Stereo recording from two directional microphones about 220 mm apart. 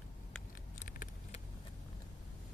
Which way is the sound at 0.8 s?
35° left (ahead or behind).